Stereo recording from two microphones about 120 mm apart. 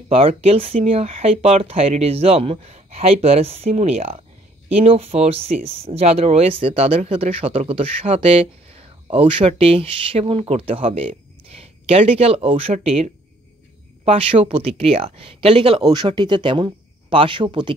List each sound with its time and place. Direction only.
0.1 s speech: 55° right (ahead or behind)
15.9 s speech: 40° right (ahead or behind)